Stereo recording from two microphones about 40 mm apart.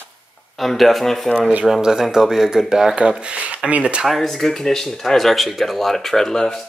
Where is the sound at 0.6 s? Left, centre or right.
Centre.